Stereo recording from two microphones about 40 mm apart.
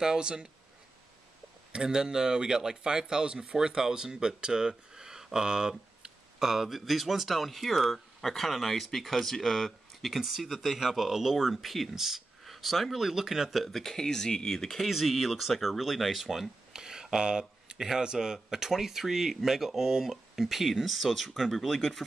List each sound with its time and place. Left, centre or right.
0.0 s speech: centre
1.7 s speech: centre
6.5 s speech: centre
8.2 s speech: centre
10.1 s speech: centre
12.9 s speech: centre
13.7 s speech: centre
14.9 s speech: centre